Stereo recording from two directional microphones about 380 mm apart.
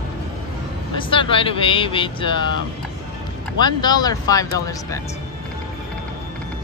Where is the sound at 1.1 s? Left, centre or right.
Centre.